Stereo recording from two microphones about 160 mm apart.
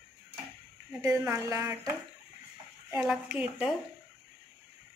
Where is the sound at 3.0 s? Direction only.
5° right (ahead or behind).